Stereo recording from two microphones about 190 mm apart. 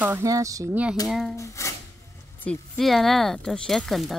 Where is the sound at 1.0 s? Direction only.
Centre (ahead or behind).